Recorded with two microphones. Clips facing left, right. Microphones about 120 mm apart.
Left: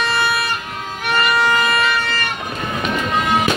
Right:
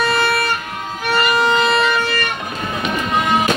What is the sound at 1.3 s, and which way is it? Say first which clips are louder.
Shofar: right 1 dB; 20° right (ahead or behind).